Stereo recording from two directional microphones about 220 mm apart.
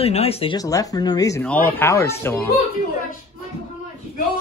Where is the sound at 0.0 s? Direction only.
25° left (ahead or behind); by 2.5 s 10° left (ahead or behind).